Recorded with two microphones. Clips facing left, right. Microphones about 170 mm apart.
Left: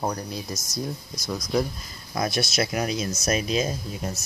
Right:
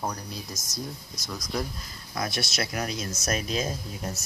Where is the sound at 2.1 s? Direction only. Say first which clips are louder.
Left 5 dB; 20° left (ahead or behind); by 4.2 s 5° left (ahead or behind).